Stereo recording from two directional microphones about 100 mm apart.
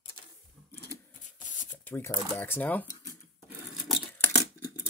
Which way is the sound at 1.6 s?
20° left (ahead or behind).